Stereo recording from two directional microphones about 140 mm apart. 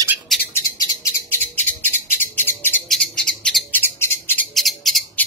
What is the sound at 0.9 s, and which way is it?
Bird, 20° left (ahead or behind).